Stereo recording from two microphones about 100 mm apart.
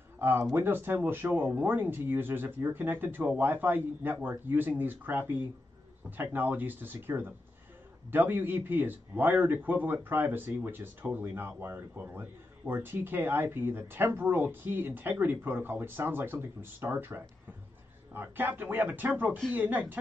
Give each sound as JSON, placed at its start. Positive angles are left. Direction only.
{"t": 0.2, "sound": "a man's voice", "side_deg": -25}